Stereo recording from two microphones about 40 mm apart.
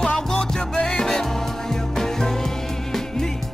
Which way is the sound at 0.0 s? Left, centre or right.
Left.